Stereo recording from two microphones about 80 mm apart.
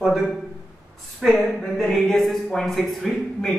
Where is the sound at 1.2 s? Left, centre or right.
Centre.